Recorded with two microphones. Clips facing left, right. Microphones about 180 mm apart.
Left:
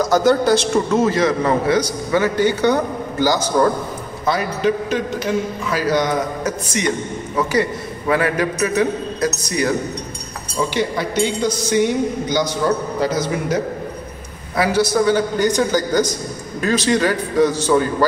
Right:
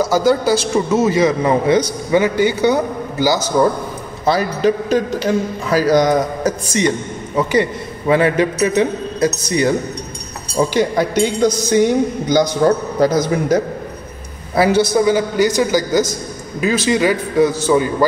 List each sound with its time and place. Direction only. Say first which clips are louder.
0.0 s a man's voice: even; 5° right (ahead or behind)
4.3 s a man's voice: right 3 dB; 35° right (ahead or behind)
8.1 s a man's voice: right 4 dB; 25° right (ahead or behind)
10.7 s a woman's voice: right 5 dB; 40° right (ahead or behind)
14.5 s a man's voice: right 5 dB; 30° right (ahead or behind)
14.9 s a man's voice: right 2 dB; 15° right (ahead or behind)